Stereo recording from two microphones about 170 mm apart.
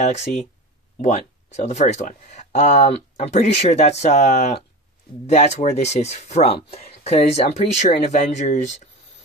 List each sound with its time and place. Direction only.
0.0 s speech: 40° left (ahead or behind)